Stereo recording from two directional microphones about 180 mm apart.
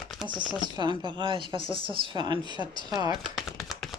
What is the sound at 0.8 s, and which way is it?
Speech, 25° right (ahead or behind).